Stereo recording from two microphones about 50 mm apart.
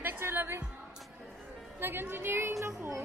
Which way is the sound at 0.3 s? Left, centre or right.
Right.